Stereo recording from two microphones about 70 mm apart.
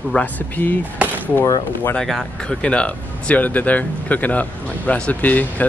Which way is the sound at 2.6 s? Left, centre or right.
Centre.